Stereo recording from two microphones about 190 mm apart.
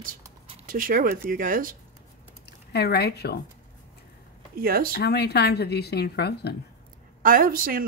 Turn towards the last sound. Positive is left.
turn(degrees=-50)  # may be behind; listen again after turning